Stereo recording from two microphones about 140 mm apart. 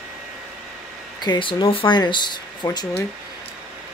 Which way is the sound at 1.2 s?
35° left (ahead or behind).